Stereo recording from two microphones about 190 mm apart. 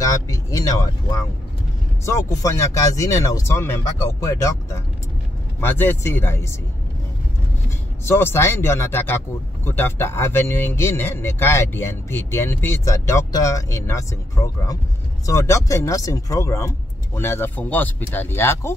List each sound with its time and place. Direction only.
0.0 s speech: 20° left (ahead or behind)
8.0 s speech: 10° left (ahead or behind)